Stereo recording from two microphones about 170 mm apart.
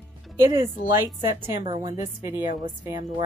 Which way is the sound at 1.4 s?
30° right (ahead or behind).